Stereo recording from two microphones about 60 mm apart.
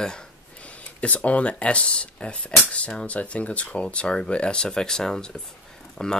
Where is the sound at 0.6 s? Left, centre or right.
Left.